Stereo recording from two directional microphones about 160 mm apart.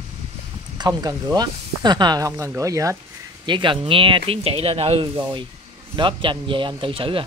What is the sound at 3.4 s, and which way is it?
Speech, 30° right (ahead or behind).